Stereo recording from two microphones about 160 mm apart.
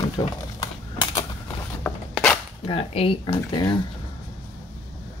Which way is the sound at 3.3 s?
25° left (ahead or behind).